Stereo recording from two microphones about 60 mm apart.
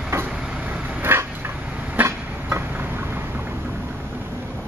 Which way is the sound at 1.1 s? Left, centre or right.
Right.